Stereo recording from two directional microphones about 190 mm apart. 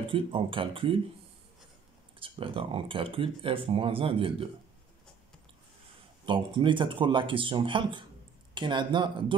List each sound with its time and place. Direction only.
0.0 s speech: 25° right (ahead or behind)
2.1 s speech: 30° right (ahead or behind)
6.2 s speech: 25° right (ahead or behind)